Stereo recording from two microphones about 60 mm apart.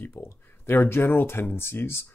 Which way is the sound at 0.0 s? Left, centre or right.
Left.